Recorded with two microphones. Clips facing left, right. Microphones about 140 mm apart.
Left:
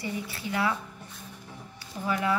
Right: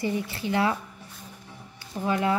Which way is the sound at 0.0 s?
25° right (ahead or behind).